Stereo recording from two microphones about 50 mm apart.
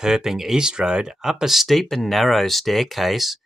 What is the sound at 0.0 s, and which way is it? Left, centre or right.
Speech, centre.